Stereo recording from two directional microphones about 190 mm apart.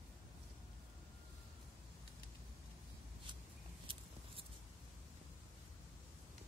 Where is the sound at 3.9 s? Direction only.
25° right (ahead or behind).